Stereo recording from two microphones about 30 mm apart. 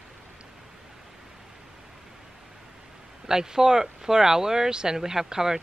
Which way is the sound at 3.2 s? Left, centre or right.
Right.